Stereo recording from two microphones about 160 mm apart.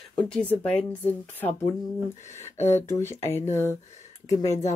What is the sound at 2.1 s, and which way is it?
Speech, 45° left (ahead or behind).